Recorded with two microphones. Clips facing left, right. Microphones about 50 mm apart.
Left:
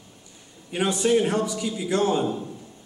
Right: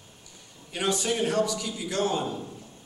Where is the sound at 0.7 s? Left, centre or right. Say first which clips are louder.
Left 6 dB; centre.